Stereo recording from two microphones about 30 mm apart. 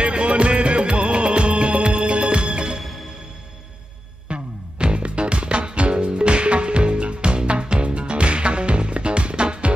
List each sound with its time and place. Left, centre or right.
0.0 s music of bollywood: right
4.3 s music: right